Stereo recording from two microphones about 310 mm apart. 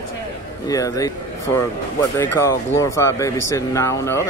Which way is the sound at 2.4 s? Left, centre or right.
Centre.